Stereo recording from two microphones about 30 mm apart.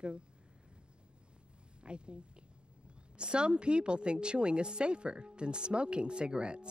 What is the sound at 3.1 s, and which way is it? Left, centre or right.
A woman's voice, right.